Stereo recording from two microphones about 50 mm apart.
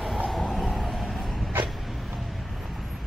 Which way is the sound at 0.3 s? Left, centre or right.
Centre.